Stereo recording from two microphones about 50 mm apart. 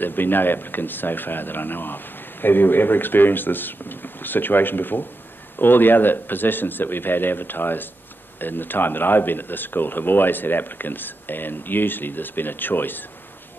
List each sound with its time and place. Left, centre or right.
0.0 s speech: left